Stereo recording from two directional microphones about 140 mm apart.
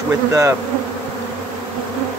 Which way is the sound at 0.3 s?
20° right (ahead or behind).